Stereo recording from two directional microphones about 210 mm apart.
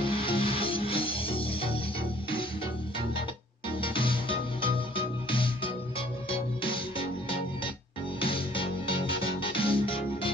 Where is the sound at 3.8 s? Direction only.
25° left (ahead or behind).